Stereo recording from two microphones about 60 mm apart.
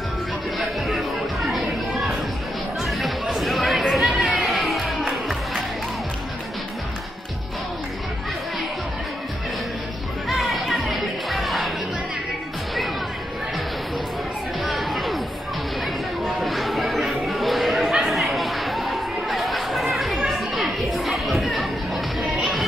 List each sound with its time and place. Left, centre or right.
0.6 s music: centre
3.3 s chatter: centre
4.1 s music: centre
4.4 s music: centre
10.2 s music: centre
14.6 s a sound: centre
16.3 s chatter: centre
20.3 s music: centre